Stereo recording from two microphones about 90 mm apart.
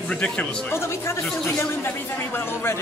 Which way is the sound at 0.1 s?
10° left (ahead or behind).